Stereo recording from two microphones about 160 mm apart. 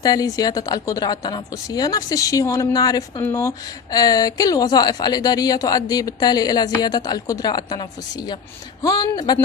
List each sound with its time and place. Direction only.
0.0 s a woman's voice: 25° left (ahead or behind)